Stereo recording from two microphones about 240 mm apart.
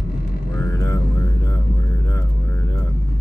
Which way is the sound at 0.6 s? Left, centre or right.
Centre.